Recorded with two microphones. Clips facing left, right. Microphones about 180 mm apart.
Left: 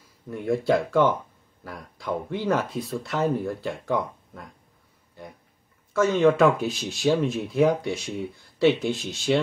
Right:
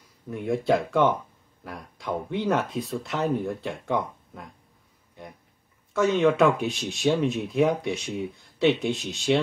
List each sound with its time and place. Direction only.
0.0 s speech: centre (ahead or behind)
5.9 s speech: centre (ahead or behind)